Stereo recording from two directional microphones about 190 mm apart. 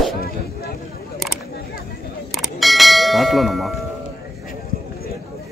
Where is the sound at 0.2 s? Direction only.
55° left (ahead or behind).